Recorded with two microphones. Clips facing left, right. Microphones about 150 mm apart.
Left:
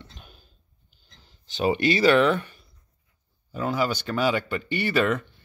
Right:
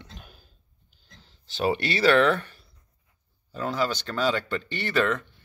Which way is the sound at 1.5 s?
5° left (ahead or behind).